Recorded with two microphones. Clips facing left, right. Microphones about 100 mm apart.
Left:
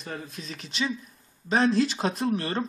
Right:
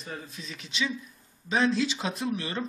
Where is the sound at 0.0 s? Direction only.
45° left (ahead or behind).